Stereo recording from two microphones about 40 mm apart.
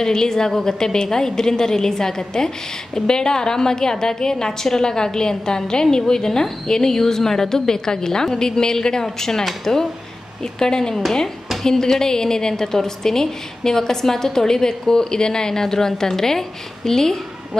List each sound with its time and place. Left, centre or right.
0.0 s a woman's voice: centre